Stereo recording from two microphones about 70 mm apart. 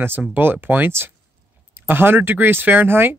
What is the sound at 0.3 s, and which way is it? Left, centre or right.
Speech, right.